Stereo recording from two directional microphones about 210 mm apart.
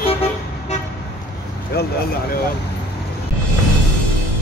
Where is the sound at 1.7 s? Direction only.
50° left (ahead or behind).